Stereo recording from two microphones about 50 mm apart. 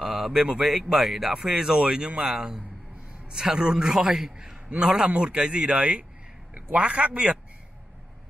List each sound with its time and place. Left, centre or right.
0.0 s a man's voice: centre; by 7.3 s right